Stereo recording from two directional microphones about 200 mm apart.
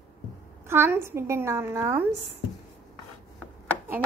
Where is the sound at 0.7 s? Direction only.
10° right (ahead or behind).